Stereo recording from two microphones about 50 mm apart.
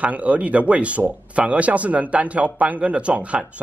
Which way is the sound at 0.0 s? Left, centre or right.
Right.